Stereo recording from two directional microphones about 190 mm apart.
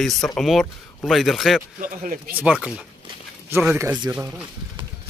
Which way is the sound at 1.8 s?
45° right (ahead or behind).